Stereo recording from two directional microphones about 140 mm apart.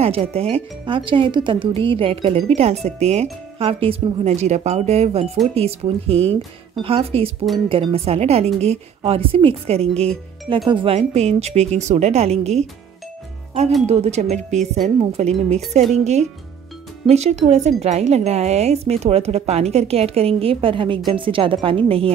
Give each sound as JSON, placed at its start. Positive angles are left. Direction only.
{"t": 0.0, "sound": "speech", "side_deg": -45}
{"t": 13.8, "sound": "a woman's voice", "side_deg": -50}